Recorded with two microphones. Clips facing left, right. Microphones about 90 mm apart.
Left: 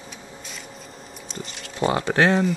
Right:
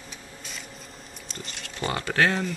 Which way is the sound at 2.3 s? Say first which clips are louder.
Left 8 dB; centre (ahead or behind).